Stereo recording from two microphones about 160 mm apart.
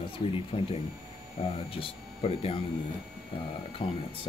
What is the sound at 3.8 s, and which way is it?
Speech, 35° left (ahead or behind).